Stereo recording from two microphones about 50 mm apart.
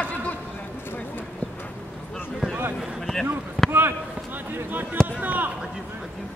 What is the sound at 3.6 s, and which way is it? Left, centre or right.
Basketball bounce, right.